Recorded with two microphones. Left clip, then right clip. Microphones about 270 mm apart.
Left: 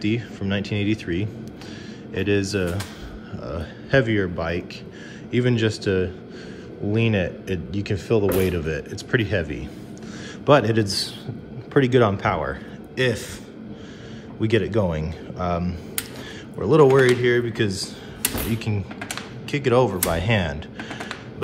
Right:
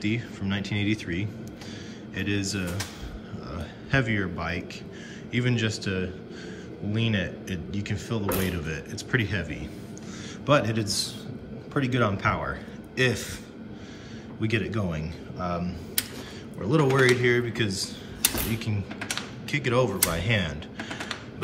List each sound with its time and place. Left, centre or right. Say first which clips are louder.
0.0 s a man's voice: left 5 dB; centre
14.4 s a man's voice: left 8 dB; centre
19.5 s speech: left 6 dB; centre